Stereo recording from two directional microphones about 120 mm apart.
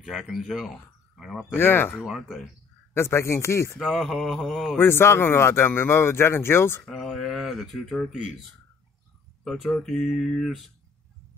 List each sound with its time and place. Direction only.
0.0 s speech: centre (ahead or behind)
1.5 s speech: 15° left (ahead or behind)
2.0 s speech: 5° right (ahead or behind)
2.9 s speech: 20° left (ahead or behind)
3.8 s speech: centre (ahead or behind)
4.7 s speech: 20° left (ahead or behind)
6.8 s speech: 5° left (ahead or behind)
9.4 s speech: centre (ahead or behind)